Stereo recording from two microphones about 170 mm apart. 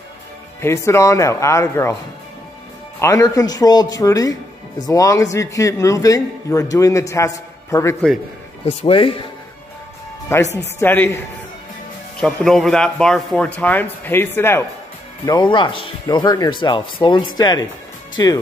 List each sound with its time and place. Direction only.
0.6 s a man's voice: 15° left (ahead or behind)
3.0 s speech: 20° left (ahead or behind)
8.6 s speech: 35° left (ahead or behind)
10.3 s a man's voice: 15° left (ahead or behind)
12.2 s a man's voice: 5° left (ahead or behind)
15.2 s speech: 25° left (ahead or behind)